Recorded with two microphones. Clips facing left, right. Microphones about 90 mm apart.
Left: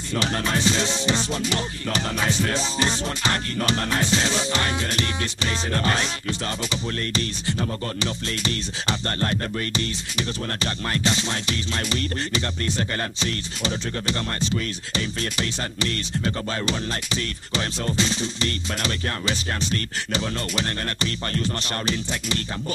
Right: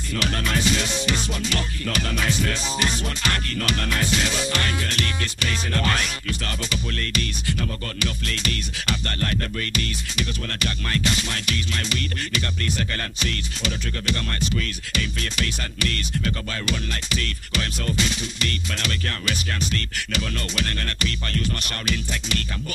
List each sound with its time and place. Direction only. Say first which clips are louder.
0.1 s music: left 1 dB; 25° left (ahead or behind)